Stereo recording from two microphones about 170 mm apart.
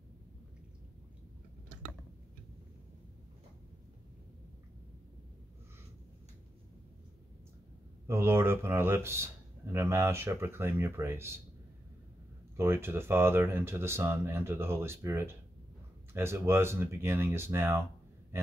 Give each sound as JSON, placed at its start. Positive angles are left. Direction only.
{"t": 8.1, "sound": "speech", "side_deg": -15}
{"t": 12.5, "sound": "speech", "side_deg": -15}
{"t": 18.3, "sound": "a sound", "side_deg": -15}